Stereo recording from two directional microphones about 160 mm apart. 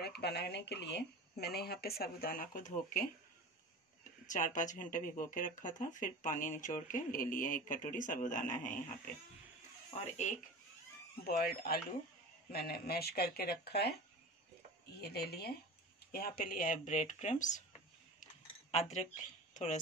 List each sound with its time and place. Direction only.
0.0 s speech: 90° left; by 3.1 s 55° left (ahead or behind)
4.3 s speech: 50° left (ahead or behind)
10.1 s speech: 50° left (ahead or behind)
11.2 s speech: 70° left (ahead or behind); by 13.9 s 85° left
15.0 s speech: 90° left
16.1 s speech: 70° left (ahead or behind); by 17.6 s 50° left (ahead or behind)
18.2 s cutlery: 45° left (ahead or behind)
19.5 s speech: 50° left (ahead or behind)